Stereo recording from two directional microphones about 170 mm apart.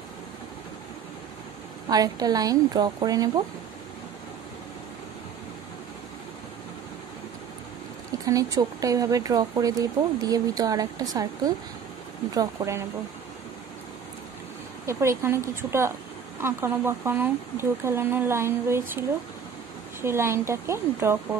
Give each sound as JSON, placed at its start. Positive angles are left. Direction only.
{"t": 1.9, "sound": "speech", "side_deg": -20}
{"t": 8.3, "sound": "speech", "side_deg": -20}
{"t": 14.9, "sound": "speech", "side_deg": -15}